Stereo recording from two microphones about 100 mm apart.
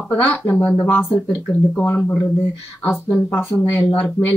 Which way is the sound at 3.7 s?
25° left (ahead or behind).